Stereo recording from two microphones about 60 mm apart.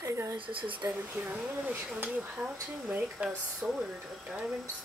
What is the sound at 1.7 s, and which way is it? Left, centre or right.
Speech, right.